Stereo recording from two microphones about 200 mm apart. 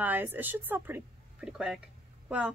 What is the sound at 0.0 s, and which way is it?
Speech, 10° right (ahead or behind).